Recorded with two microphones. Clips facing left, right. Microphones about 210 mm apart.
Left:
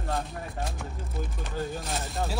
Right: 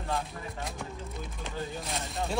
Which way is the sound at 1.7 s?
Centre (ahead or behind).